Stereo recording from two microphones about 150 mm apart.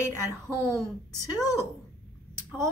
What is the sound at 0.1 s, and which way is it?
Speech, 15° right (ahead or behind).